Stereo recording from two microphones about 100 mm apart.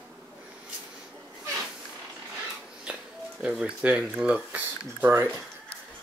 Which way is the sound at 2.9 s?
10° right (ahead or behind).